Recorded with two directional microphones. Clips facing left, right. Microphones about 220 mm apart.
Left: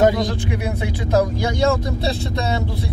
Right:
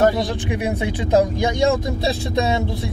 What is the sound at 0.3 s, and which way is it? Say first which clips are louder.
Speech: right 1 dB; 15° right (ahead or behind).